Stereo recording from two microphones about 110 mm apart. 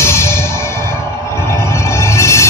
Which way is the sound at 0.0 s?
25° left (ahead or behind).